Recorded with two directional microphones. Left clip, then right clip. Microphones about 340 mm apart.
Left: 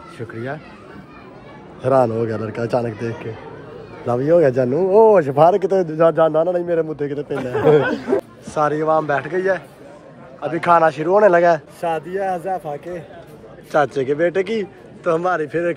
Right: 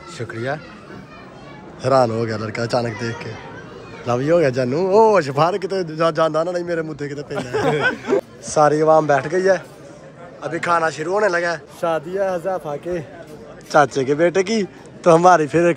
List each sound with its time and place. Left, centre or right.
0.2 s speech: centre
1.8 s speech: centre
12.1 s a man's voice: centre